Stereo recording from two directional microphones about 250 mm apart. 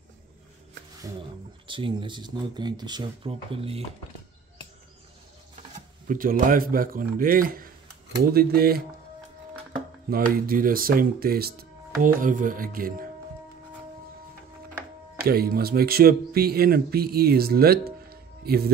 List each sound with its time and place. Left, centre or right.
1.7 s speech: centre
6.0 s a man's voice: right
10.0 s a man's voice: right
15.2 s a man's voice: right